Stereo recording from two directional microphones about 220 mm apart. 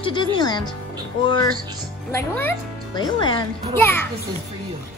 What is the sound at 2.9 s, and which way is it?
Speech, 20° left (ahead or behind).